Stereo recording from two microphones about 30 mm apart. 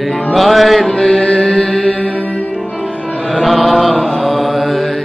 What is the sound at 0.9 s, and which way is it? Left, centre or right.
Music, left.